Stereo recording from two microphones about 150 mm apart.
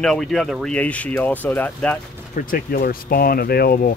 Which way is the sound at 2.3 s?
65° left (ahead or behind).